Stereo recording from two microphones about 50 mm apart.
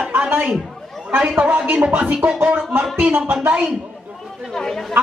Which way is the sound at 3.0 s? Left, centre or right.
Right.